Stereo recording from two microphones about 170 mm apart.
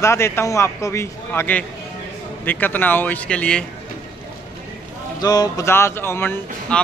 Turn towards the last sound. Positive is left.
turn(degrees=10)  # may be behind; listen again after turning